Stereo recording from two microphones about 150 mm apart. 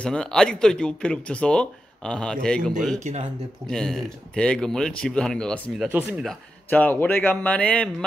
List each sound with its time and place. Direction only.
0.0 s speech: 5° left (ahead or behind)
3.0 s speech: 45° right (ahead or behind)
3.6 s speech: 5° left (ahead or behind)